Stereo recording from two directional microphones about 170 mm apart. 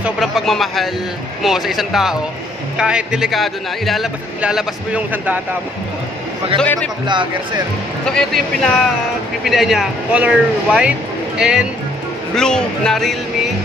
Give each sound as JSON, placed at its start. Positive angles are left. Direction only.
{"t": 0.0, "sound": "speech", "side_deg": 0}
{"t": 6.6, "sound": "speech", "side_deg": 5}
{"t": 7.1, "sound": "speech", "side_deg": -25}
{"t": 8.1, "sound": "speech", "side_deg": 5}